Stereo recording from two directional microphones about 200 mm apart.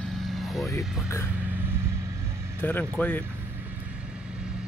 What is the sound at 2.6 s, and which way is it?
Speech, 10° left (ahead or behind).